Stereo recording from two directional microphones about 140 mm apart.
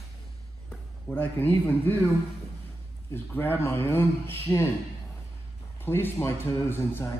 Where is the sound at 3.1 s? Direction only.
15° left (ahead or behind).